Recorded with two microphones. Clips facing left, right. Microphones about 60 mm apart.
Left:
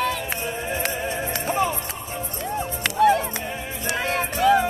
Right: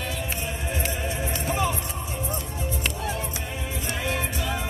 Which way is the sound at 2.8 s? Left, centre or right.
Left.